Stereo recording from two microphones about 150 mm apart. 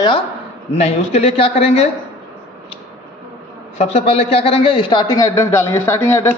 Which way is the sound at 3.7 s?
45° left (ahead or behind).